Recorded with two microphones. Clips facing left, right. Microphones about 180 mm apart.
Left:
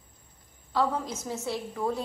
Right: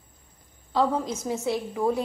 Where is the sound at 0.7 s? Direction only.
20° right (ahead or behind).